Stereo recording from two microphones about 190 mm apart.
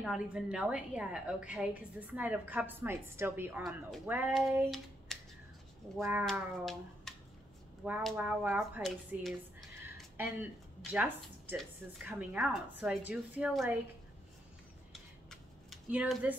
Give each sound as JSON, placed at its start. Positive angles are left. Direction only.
{"t": 0.0, "sound": "a woman's voice", "side_deg": -5}
{"t": 4.6, "sound": "hands", "side_deg": 0}
{"t": 6.6, "sound": "a child's voice", "side_deg": 0}
{"t": 10.1, "sound": "a woman's voice", "side_deg": -10}
{"t": 14.9, "sound": "scissors", "side_deg": 0}